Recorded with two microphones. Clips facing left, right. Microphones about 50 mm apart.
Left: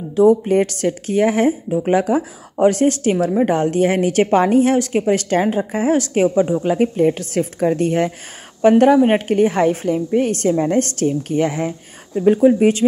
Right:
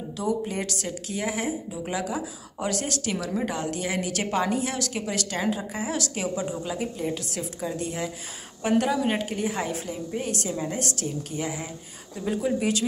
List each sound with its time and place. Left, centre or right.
0.1 s a woman's voice: left
6.7 s a woman's voice: left
12.2 s a woman's voice: left